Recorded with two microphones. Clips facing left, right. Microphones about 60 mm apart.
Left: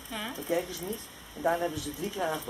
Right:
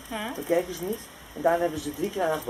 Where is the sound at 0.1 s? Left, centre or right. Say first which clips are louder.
Right 5 dB; centre.